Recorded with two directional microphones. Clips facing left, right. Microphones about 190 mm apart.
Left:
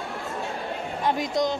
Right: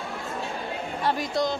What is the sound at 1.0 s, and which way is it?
Speech, 15° left (ahead or behind).